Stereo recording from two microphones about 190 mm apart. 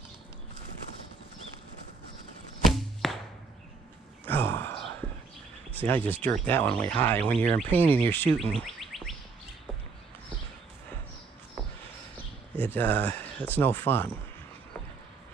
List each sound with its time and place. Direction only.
2.6 s a sound: centre (ahead or behind)
4.3 s sigh: 10° left (ahead or behind)
5.8 s chirp tone: 10° left (ahead or behind)
12.5 s chirp tone: 10° left (ahead or behind)